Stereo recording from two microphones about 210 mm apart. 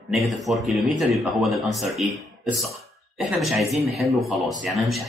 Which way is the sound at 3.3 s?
Centre (ahead or behind).